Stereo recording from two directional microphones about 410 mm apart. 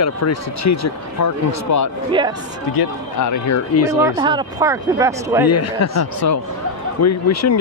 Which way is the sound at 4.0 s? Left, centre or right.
Centre.